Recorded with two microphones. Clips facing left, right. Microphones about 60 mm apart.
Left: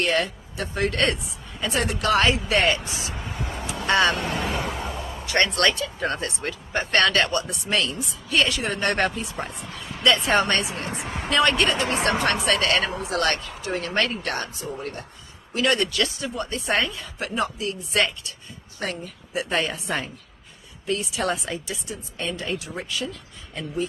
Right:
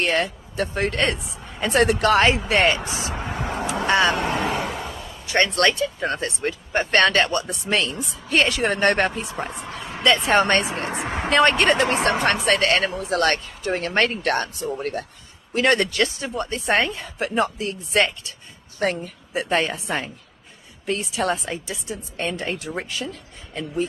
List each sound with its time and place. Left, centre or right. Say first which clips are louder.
0.0 s speech: right 1 dB; right
1.6 s speech: right 7 dB; right
2.0 s speech: right 3 dB; right
3.3 s vehicle: right 6 dB; right
4.6 s a sound: even; centre
5.2 s a sound: right 2 dB; right
5.6 s speech: right 2 dB; right
14.6 s speech: right 5 dB; right
15.5 s speech: right 3 dB; right
19.7 s speech: right 1 dB; right
20.8 s speech: right 2 dB; right
22.1 s speech: right 2 dB; right